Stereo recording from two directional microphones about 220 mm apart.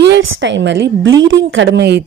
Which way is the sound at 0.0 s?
55° right (ahead or behind).